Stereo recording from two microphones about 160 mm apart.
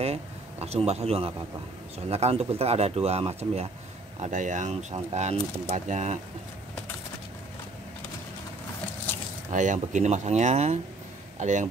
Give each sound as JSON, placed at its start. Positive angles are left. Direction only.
{"t": 0.0, "sound": "speech", "side_deg": -40}
{"t": 9.5, "sound": "speech", "side_deg": -50}